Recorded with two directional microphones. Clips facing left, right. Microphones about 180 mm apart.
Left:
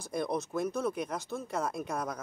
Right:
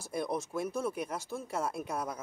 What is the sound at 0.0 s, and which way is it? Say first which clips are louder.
Speech: left 2 dB; 5° right (ahead or behind).